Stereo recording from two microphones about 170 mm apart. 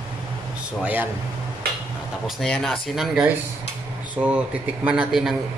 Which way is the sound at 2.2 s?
Centre (ahead or behind).